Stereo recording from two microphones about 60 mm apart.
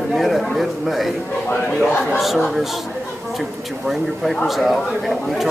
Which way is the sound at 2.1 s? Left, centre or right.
Centre.